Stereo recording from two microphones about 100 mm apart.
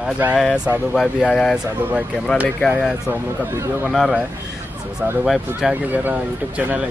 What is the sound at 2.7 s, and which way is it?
Speech, 15° right (ahead or behind).